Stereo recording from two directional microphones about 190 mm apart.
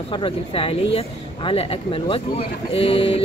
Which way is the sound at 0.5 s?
30° left (ahead or behind).